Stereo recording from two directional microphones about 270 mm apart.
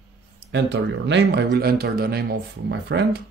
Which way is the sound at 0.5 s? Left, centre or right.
Right.